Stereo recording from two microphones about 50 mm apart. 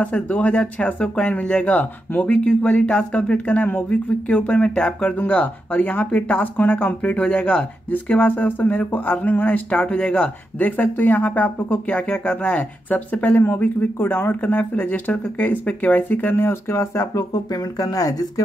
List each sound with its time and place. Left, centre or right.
0.0 s speech: left
2.2 s speech: centre
5.2 s speech: left
7.1 s speech: left
12.1 s speech: left
13.9 s speech: left